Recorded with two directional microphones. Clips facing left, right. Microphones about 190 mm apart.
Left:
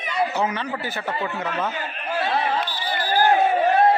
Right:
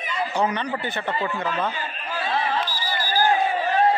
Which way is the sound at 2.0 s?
65° left (ahead or behind).